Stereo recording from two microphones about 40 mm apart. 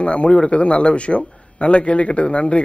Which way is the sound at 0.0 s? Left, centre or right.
Left.